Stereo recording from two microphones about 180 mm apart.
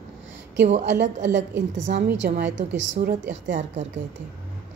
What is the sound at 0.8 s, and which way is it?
Speech, 80° right.